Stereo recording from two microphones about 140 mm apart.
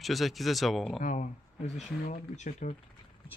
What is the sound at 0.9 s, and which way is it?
Speech, 55° left (ahead or behind).